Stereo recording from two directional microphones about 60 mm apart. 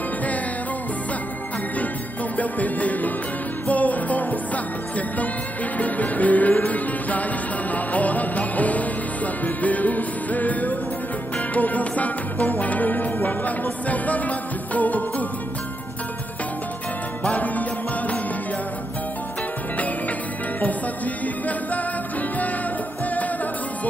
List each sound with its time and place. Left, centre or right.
2.3 s music: left
5.8 s music: left
17.2 s music: left
20.6 s music: left